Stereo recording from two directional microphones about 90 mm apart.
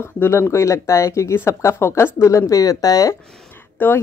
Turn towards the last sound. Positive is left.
turn(degrees=25)  # may be behind; listen again after turning